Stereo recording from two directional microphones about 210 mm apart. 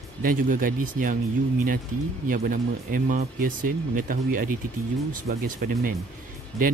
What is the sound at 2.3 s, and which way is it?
Speech, 40° right (ahead or behind).